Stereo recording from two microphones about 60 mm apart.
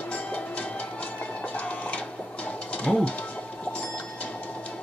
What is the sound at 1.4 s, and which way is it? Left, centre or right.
Printer, left.